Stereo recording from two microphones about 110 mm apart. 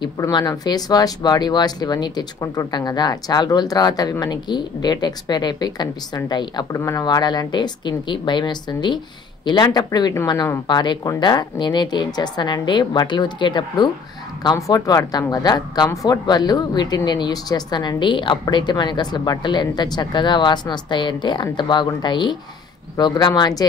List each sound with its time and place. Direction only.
0.3 s speech: 40° left (ahead or behind)